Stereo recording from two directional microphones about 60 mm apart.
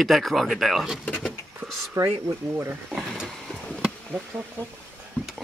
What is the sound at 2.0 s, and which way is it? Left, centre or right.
Speech, right.